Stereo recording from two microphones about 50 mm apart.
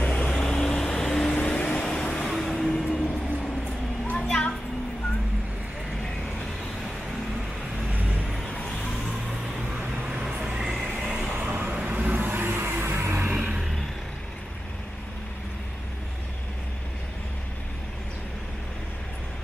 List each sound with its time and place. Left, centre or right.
0.0 s vehicle: left; by 2.9 s centre
4.1 s a sound: left
7.9 s vehicle: right
9.8 s vehicle: right
10.2 s vehicle: centre
11.2 s vehicle: right